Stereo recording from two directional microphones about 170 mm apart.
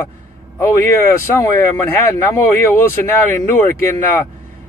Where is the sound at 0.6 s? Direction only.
15° left (ahead or behind).